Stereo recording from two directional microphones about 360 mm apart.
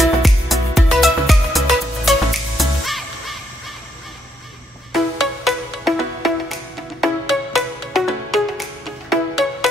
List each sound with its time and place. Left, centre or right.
0.0 s music: centre
4.9 s music: centre